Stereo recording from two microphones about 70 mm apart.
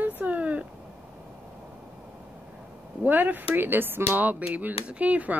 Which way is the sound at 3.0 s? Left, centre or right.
Right.